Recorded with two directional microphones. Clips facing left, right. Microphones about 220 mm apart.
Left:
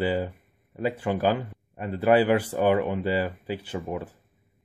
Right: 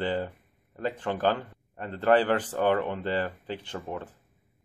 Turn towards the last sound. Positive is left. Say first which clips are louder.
# left 4 dB
turn(degrees=10)  # may be behind; listen again after turning